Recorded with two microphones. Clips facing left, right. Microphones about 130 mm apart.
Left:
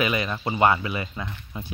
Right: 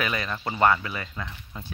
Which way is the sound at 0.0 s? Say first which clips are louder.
Left 4 dB; 15° left (ahead or behind).